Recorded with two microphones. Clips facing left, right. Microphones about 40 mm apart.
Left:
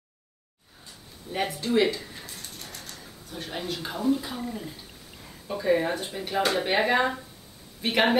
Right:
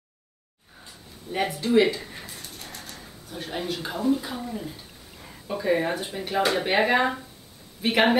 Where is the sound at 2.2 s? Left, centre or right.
Centre.